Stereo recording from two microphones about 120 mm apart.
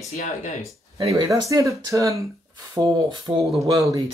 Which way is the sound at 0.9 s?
35° right (ahead or behind).